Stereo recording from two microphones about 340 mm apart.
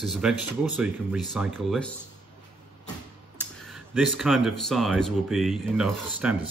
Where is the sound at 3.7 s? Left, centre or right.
Centre.